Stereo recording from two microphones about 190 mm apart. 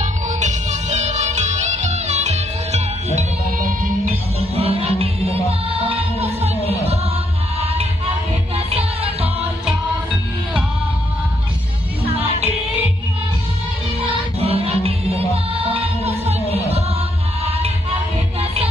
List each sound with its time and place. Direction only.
0.0 s music: 40° right (ahead or behind)
4.4 s music: 30° right (ahead or behind)
8.6 s music: 30° right (ahead or behind)
12.1 s music: 30° right (ahead or behind)
14.0 s music: 30° right (ahead or behind)